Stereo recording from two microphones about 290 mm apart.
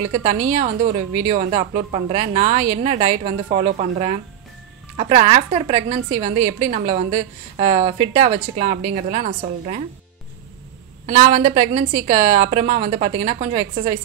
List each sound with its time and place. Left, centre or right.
0.1 s a woman's voice: right
11.1 s a woman's voice: right